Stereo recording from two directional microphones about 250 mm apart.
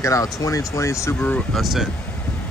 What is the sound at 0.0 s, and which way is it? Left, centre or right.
Speech, centre.